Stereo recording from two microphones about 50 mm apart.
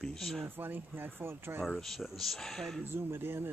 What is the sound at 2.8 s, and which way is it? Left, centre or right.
Speech, right.